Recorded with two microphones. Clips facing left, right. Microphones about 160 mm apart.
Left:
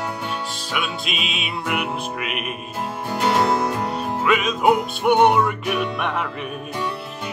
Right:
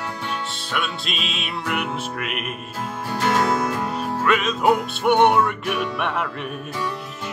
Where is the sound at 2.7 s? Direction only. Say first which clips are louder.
Left 2 dB; 20° left (ahead or behind).